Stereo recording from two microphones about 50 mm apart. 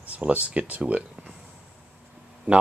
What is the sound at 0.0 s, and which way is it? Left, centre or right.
Speech, right.